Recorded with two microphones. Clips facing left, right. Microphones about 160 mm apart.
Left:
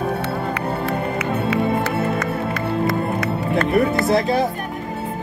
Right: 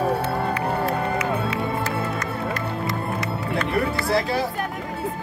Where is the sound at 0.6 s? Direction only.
65° left (ahead or behind).